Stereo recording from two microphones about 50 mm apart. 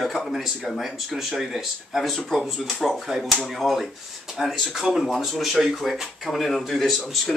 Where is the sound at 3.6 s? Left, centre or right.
Centre.